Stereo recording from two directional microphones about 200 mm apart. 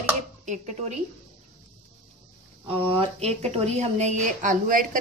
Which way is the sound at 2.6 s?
30° right (ahead or behind).